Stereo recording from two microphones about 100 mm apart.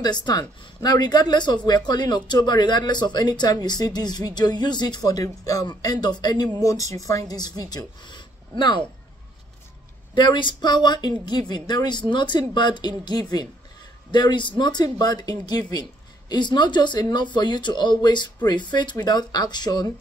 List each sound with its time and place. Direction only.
0.2 s speech: 40° left (ahead or behind)
10.1 s speech: 50° left (ahead or behind)